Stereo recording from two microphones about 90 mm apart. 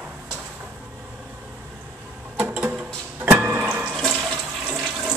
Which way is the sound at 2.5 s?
15° right (ahead or behind).